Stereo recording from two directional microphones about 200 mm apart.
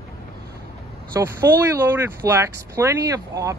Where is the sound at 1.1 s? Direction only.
15° right (ahead or behind).